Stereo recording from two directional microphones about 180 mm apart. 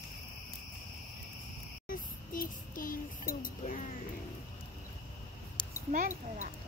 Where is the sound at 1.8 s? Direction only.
50° left (ahead or behind).